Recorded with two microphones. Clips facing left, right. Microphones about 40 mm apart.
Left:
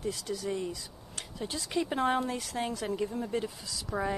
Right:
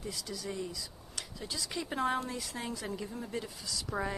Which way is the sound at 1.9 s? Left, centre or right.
Left.